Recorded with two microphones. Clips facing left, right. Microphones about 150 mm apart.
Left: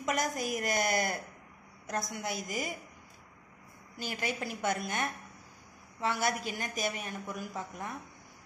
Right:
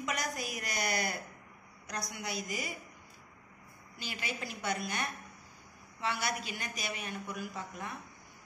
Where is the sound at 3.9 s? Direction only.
50° left (ahead or behind).